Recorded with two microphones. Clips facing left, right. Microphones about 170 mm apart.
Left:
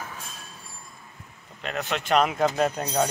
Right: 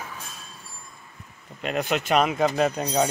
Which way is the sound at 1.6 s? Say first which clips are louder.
Right 4 dB; 15° right (ahead or behind).